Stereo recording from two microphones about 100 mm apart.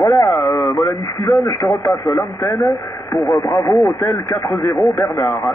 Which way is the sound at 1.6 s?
45° left (ahead or behind).